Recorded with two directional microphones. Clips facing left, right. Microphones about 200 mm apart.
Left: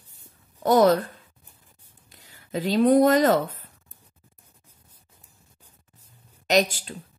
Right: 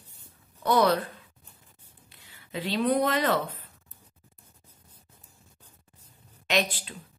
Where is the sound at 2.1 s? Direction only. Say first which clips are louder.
Left 7 dB; 40° left (ahead or behind).